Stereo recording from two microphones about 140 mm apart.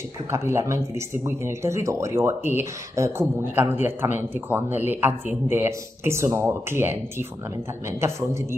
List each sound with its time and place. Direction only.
0.3 s speech: 20° right (ahead or behind)